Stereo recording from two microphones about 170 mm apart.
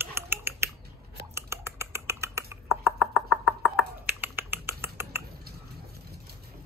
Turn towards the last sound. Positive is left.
turn(degrees=-15)  # may be behind; listen again after turning